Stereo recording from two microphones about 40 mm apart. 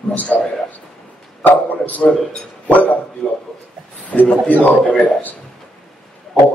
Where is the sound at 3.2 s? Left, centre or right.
Left.